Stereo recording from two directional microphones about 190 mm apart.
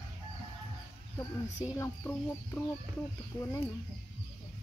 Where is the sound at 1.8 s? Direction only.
10° left (ahead or behind).